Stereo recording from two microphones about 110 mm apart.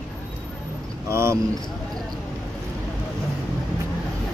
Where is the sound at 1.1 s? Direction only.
25° right (ahead or behind).